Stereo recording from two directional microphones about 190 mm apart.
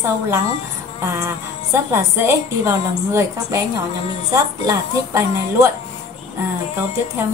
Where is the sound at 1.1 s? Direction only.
15° right (ahead or behind).